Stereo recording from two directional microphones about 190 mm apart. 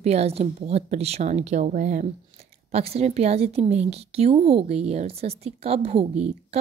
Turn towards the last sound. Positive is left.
turn(degrees=-35)  # may be behind; listen again after turning